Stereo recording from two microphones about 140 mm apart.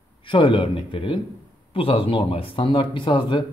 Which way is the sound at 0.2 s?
35° left (ahead or behind).